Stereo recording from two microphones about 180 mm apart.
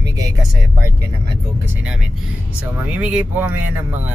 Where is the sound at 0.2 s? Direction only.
20° right (ahead or behind).